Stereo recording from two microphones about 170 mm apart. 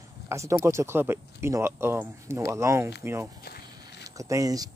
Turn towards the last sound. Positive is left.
turn(degrees=-20)  # may be behind; listen again after turning